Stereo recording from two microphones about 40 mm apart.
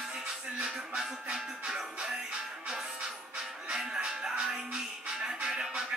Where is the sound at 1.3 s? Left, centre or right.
Centre.